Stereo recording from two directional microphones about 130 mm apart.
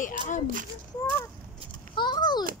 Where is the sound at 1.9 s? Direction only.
35° left (ahead or behind).